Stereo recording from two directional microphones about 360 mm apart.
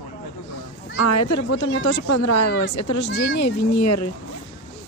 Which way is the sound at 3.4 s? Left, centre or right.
Left.